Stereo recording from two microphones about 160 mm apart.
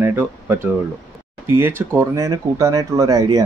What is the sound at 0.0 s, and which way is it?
Speech, 15° right (ahead or behind).